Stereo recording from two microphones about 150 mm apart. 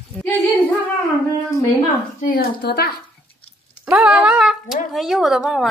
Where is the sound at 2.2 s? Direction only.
75° left (ahead or behind).